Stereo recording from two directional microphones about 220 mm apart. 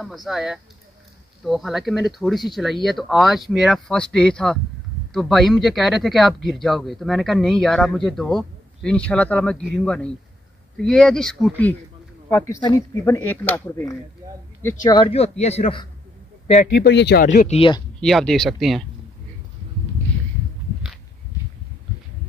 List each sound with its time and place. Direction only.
0.0 s speech: centre (ahead or behind); by 15.9 s 25° left (ahead or behind)
16.8 s speech: 50° left (ahead or behind)
17.3 s speech: 30° left (ahead or behind)
18.0 s speech: centre (ahead or behind)